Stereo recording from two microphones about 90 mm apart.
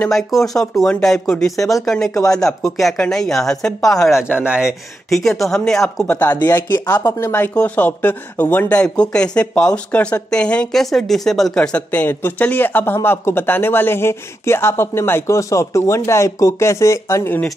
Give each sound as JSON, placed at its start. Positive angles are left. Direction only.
{"t": 0.1, "sound": "speech", "side_deg": 5}
{"t": 4.2, "sound": "speech", "side_deg": -10}
{"t": 5.7, "sound": "speech", "side_deg": 5}
{"t": 6.0, "sound": "speech", "side_deg": 15}
{"t": 6.3, "sound": "speech", "side_deg": 45}
{"t": 7.2, "sound": "speech", "side_deg": 25}